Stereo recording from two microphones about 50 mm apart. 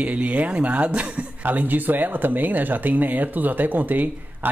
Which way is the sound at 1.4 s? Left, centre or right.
Right.